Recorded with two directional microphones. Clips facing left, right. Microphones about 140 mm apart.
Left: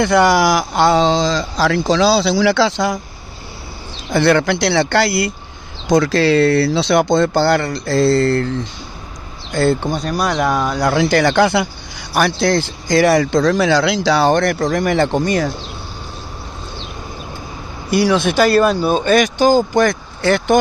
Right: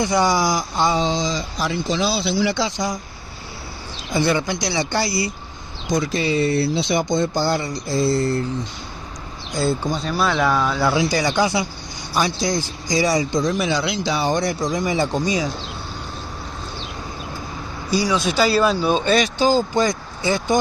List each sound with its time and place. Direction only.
0.0 s a man's voice: 65° left (ahead or behind)
4.1 s a man's voice: 75° left (ahead or behind)
5.9 s a man's voice: 85° left
10.1 s speech: 15° left (ahead or behind)
10.9 s a man's voice: 65° left (ahead or behind)
17.9 s speech: 60° left (ahead or behind)